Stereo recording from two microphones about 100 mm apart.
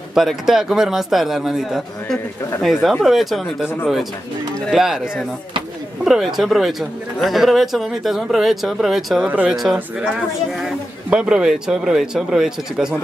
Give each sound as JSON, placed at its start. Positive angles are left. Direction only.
{"t": 0.1, "sound": "speech", "side_deg": -5}
{"t": 9.2, "sound": "speech", "side_deg": -15}
{"t": 9.6, "sound": "speech", "side_deg": -5}